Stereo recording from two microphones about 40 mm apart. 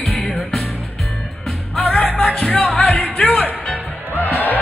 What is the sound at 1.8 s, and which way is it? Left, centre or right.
Music, left.